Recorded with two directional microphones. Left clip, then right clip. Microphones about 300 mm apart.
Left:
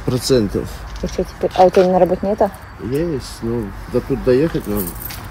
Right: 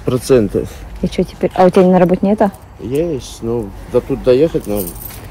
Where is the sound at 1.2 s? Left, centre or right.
Right.